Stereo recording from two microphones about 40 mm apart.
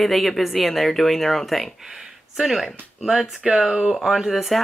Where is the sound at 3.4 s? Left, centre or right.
Centre.